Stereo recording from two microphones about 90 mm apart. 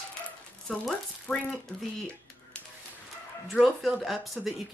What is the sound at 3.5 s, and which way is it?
Speech, centre (ahead or behind).